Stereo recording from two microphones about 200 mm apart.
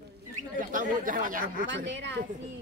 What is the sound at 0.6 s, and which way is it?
Speech, 40° right (ahead or behind).